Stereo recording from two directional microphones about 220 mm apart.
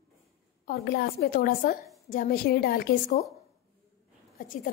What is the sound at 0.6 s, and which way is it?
A woman's voice, 45° left (ahead or behind).